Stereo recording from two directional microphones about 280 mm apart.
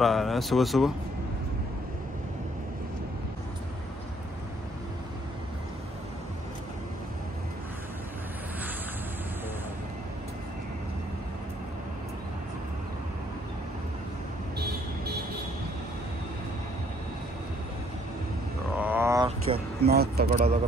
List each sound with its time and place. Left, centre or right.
0.0 s speech: centre
18.8 s wild animals: centre
19.8 s vehicle: right
20.2 s a sound: right